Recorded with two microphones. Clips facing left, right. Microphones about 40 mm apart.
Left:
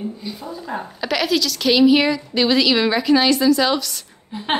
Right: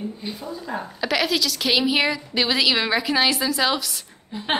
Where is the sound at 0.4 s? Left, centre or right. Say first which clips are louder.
Left 2 dB; centre.